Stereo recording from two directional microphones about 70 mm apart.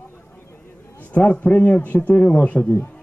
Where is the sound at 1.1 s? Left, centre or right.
Centre.